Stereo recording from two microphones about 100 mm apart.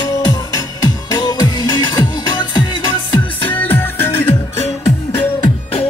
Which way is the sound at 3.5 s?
20° left (ahead or behind).